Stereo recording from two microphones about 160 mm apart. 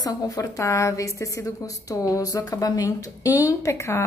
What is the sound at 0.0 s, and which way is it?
A woman's voice, 20° left (ahead or behind).